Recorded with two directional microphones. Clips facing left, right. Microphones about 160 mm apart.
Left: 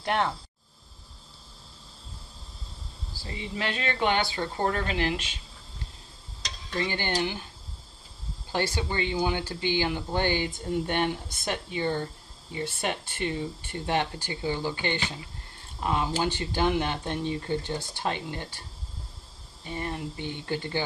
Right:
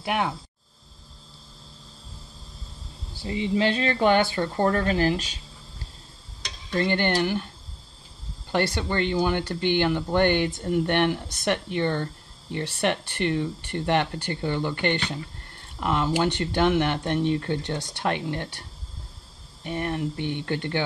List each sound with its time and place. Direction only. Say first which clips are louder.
0.0 s speech: right 1 dB; 10° right (ahead or behind)
3.2 s speech: right 10 dB; 25° right (ahead or behind)
6.8 s speech: right 5 dB; 60° right (ahead or behind)
8.5 s speech: right 4 dB; 65° right (ahead or behind)
19.6 s speech: right 6 dB; 70° right (ahead or behind)